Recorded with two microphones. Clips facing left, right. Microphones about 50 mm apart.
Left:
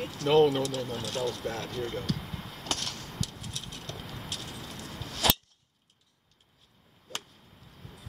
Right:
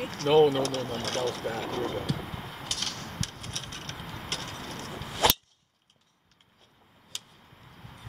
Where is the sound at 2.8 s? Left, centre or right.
Right.